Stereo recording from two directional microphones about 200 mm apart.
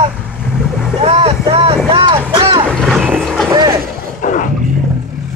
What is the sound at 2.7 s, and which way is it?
Vehicle, centre (ahead or behind).